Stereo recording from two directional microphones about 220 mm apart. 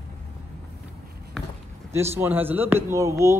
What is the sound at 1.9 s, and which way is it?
A man's voice, 10° right (ahead or behind).